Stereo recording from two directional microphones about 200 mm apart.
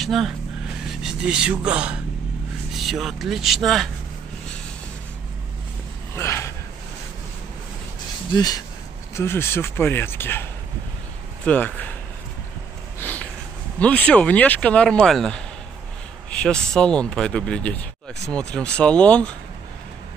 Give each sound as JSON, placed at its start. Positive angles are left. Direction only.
{"t": 0.0, "sound": "speech", "side_deg": 0}
{"t": 6.1, "sound": "a sound", "side_deg": 15}
{"t": 8.4, "sound": "speech", "side_deg": 20}
{"t": 11.4, "sound": "speech", "side_deg": 10}
{"t": 13.0, "sound": "a sound", "side_deg": 10}
{"t": 13.7, "sound": "speech", "side_deg": 5}